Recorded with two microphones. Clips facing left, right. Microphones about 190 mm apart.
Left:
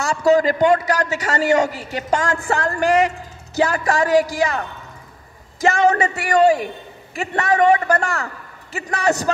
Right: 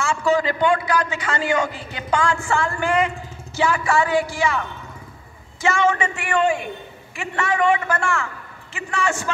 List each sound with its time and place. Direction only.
0.0 s a man's voice: 40° left (ahead or behind)